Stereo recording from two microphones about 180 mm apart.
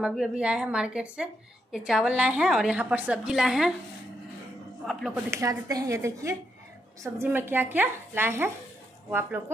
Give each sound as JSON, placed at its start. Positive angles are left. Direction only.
{"t": 0.0, "sound": "a woman's voice", "side_deg": -5}
{"t": 4.8, "sound": "a woman's voice", "side_deg": 0}
{"t": 5.3, "sound": "speech", "side_deg": -20}